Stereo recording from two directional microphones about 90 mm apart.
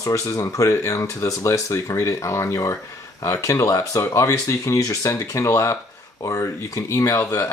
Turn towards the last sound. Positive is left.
turn(degrees=40)  # may be behind; listen again after turning